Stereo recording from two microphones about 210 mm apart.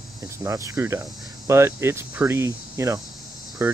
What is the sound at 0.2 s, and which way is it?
Speech, 15° right (ahead or behind).